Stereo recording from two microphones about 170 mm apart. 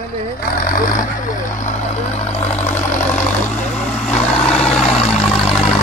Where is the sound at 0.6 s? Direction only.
50° left (ahead or behind).